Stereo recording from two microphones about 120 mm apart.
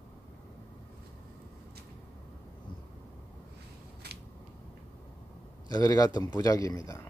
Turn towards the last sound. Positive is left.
turn(degrees=25)  # may be behind; listen again after turning